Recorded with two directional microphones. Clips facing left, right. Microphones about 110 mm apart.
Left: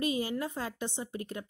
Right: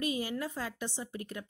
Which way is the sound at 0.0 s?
30° left (ahead or behind).